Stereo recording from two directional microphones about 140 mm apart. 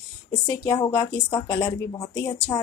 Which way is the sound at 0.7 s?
30° left (ahead or behind).